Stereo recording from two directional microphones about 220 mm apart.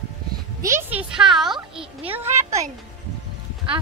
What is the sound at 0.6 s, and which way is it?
A child's voice, 10° right (ahead or behind).